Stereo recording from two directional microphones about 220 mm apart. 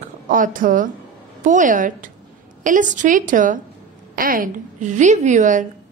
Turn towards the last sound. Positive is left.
turn(degrees=-35)  # may be behind; listen again after turning